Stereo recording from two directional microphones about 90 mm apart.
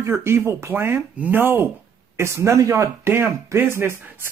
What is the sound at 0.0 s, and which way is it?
Speech, 30° right (ahead or behind).